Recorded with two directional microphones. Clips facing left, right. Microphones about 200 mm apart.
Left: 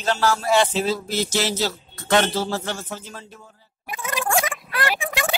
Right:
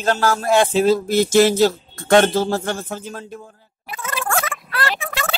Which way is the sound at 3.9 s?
15° left (ahead or behind).